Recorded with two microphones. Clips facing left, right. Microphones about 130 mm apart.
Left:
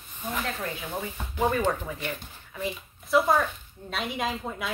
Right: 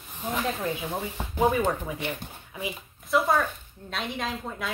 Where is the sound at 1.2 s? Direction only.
25° right (ahead or behind).